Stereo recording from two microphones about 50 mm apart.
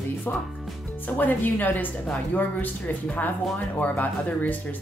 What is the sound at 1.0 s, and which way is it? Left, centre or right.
Speech, left.